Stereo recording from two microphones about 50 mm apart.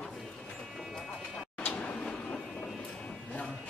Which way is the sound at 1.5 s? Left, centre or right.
Left.